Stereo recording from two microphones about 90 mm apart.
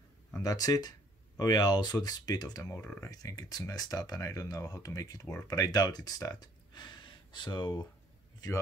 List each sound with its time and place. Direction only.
0.4 s speech: 45° left (ahead or behind)